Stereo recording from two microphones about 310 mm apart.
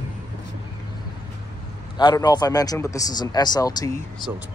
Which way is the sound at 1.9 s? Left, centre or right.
Centre.